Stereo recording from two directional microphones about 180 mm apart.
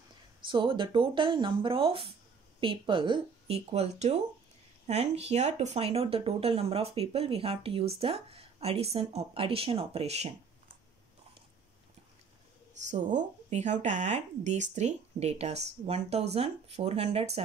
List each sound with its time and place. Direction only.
0.5 s speech: 25° right (ahead or behind)
13.1 s speech: 40° right (ahead or behind)